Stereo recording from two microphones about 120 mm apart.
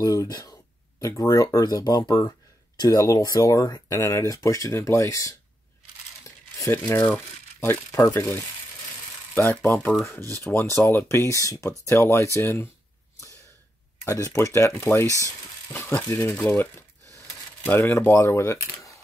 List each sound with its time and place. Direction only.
0.0 s speech: 30° left (ahead or behind)
6.7 s speech: 15° left (ahead or behind)
14.0 s speech: 25° left (ahead or behind)
15.0 s speech: 25° right (ahead or behind)
15.7 s speech: 20° left (ahead or behind)